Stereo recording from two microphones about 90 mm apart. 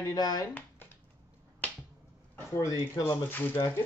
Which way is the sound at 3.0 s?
35° left (ahead or behind).